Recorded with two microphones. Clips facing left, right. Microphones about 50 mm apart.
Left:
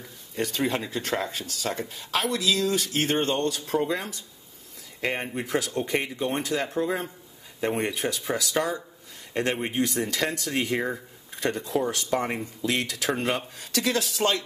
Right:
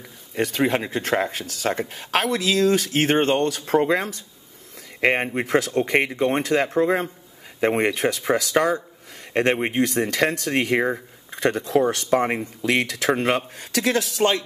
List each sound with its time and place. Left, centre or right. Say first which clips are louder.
0.4 s speech: right 5 dB; right
12.1 s speech: right 6 dB; right
12.6 s speech: right 6 dB; right
13.1 s speech: right 6 dB; right
14.2 s speech: right 5 dB; right